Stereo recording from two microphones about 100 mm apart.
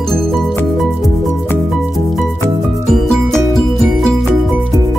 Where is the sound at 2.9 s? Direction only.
5° left (ahead or behind).